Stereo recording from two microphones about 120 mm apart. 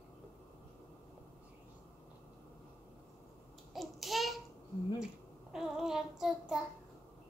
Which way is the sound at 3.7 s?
Centre (ahead or behind).